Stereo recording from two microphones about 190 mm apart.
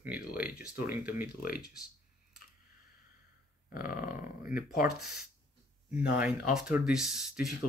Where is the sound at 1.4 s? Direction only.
50° left (ahead or behind).